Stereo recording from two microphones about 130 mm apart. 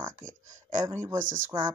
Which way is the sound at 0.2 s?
80° right.